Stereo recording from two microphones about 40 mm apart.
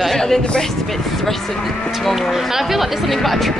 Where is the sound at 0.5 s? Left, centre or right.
Centre.